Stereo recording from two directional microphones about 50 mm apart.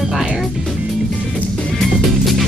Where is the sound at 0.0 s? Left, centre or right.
Centre.